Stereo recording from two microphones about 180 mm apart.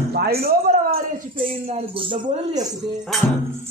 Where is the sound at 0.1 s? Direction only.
60° right (ahead or behind).